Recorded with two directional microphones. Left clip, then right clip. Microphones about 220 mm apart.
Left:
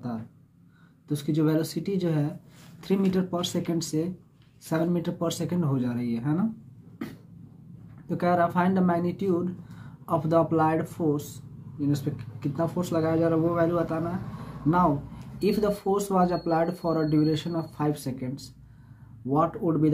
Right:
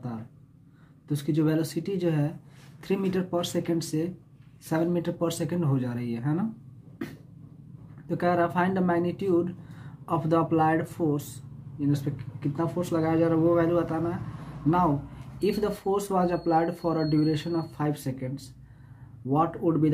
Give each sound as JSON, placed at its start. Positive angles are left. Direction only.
{"t": 1.0, "sound": "speech", "side_deg": -15}
{"t": 8.1, "sound": "speech", "side_deg": -15}
{"t": 15.4, "sound": "speech", "side_deg": -15}